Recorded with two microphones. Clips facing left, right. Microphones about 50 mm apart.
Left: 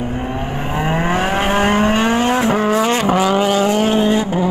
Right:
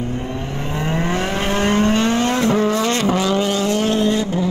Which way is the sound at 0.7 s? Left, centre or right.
Centre.